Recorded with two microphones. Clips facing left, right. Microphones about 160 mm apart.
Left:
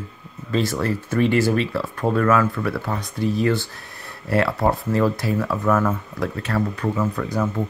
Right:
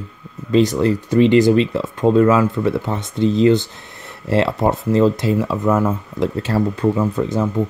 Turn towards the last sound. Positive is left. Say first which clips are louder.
# right 4 dB
turn(degrees=-25)  # may be behind; listen again after turning